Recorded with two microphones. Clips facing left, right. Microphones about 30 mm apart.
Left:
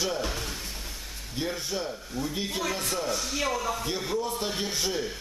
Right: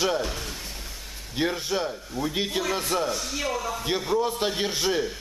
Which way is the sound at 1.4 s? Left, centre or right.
Right.